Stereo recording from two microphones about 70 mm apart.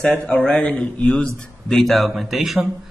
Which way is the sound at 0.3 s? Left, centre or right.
Centre.